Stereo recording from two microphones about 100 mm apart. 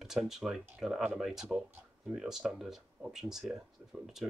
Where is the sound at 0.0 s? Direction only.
5° right (ahead or behind).